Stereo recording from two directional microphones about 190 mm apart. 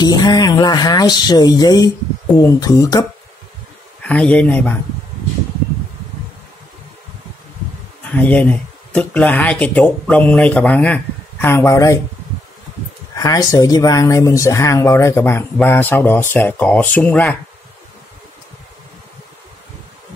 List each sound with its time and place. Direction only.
0.0 s speech: 20° left (ahead or behind)
4.0 s speech: 5° left (ahead or behind)
8.1 s speech: 10° left (ahead or behind)
13.1 s speech: 15° left (ahead or behind)